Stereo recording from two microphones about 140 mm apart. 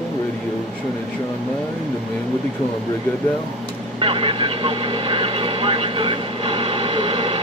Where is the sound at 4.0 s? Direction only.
40° right (ahead or behind).